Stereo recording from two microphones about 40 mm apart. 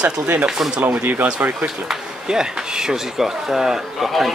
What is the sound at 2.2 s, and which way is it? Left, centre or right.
A man's voice, centre.